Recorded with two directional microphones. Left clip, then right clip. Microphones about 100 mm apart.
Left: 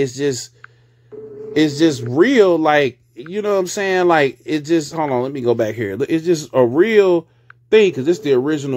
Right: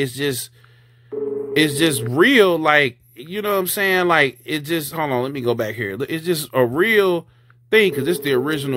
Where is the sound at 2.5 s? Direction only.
20° left (ahead or behind).